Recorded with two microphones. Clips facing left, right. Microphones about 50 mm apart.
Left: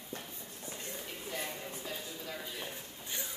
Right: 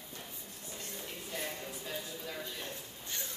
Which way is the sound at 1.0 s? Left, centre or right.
Centre.